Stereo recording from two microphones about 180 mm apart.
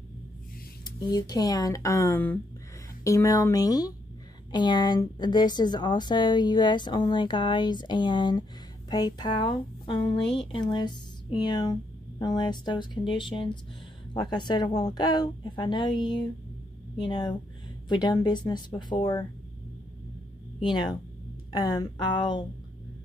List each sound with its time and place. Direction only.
1.1 s a woman's voice: 20° left (ahead or behind)
20.6 s a woman's voice: 25° left (ahead or behind)